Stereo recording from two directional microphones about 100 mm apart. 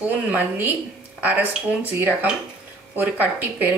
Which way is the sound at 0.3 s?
20° right (ahead or behind).